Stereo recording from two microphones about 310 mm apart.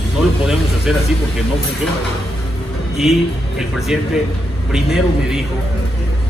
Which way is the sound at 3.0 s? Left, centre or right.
Centre.